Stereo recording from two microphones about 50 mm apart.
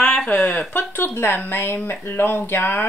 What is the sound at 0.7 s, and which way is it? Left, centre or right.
Speech, left.